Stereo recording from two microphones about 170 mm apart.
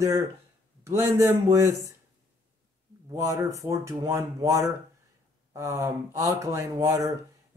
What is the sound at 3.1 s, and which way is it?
Speech, 20° right (ahead or behind).